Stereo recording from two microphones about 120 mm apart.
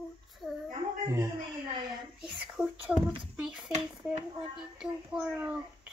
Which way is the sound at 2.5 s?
5° right (ahead or behind).